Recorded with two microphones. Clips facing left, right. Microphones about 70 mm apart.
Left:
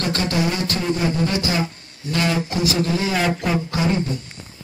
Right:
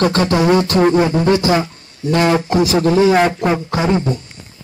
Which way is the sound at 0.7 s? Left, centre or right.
Right.